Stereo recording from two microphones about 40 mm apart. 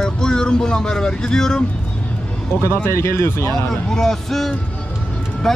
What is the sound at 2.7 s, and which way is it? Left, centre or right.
Speech, left.